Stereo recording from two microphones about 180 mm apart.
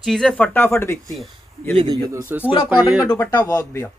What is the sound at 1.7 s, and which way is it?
Speech, 30° right (ahead or behind).